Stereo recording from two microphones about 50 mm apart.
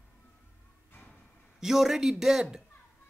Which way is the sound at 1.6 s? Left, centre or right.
Centre.